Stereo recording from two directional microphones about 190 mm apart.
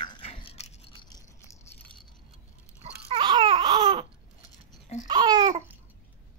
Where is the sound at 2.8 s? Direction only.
30° right (ahead or behind).